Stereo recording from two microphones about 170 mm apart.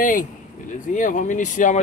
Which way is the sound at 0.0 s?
50° left (ahead or behind).